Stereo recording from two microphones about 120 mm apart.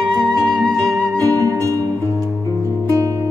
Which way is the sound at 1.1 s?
30° right (ahead or behind).